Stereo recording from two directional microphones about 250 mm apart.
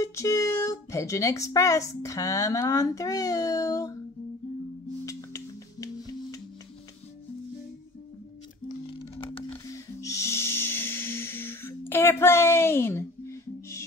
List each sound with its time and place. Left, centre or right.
0.0 s speech: centre
5.0 s music: centre
8.6 s music: left
9.5 s music: centre